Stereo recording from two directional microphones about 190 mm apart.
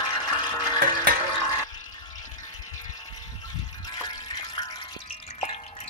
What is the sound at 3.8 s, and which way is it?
Drip, 25° left (ahead or behind).